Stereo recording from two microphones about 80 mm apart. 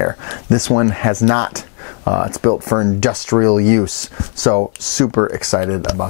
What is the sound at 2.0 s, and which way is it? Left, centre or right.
Speech, centre.